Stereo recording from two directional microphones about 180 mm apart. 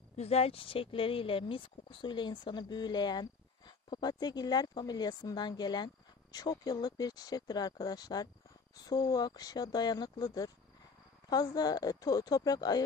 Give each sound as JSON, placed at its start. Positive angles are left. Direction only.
{"t": 0.1, "sound": "speech", "side_deg": 35}